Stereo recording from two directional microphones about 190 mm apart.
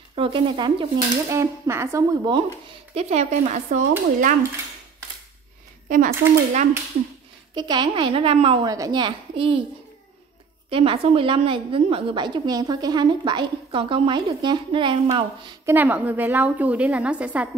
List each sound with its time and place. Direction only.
0.1 s a woman's voice: 25° right (ahead or behind)
1.3 s a woman's voice: 15° right (ahead or behind)
2.9 s speech: 35° right (ahead or behind)
5.9 s speech: 45° right (ahead or behind)
7.5 s a woman's voice: 20° right (ahead or behind)
10.7 s a woman's voice: 30° right (ahead or behind)
15.6 s a woman's voice: 10° right (ahead or behind)